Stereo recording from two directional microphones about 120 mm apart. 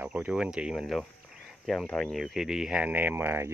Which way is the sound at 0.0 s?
10° right (ahead or behind).